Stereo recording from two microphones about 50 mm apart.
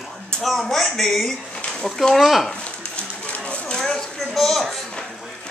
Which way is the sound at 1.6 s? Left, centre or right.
Left.